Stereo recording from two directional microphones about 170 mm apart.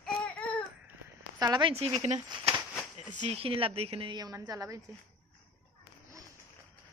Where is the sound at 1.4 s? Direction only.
25° right (ahead or behind).